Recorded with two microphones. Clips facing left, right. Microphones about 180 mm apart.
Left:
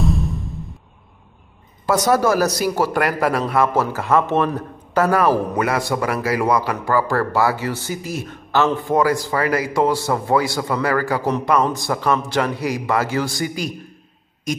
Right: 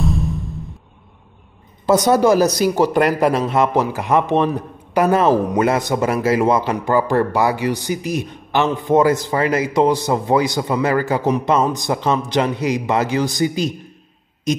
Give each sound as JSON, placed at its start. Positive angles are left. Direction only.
{"t": 0.0, "sound": "music", "side_deg": 0}
{"t": 1.9, "sound": "a man's voice", "side_deg": -20}